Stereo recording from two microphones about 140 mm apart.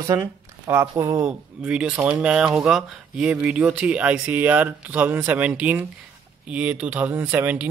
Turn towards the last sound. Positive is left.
turn(degrees=-10)  # may be behind; listen again after turning